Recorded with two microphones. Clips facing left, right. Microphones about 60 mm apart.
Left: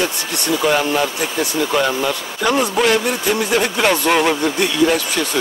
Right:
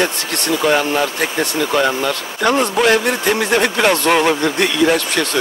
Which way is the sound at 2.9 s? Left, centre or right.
Right.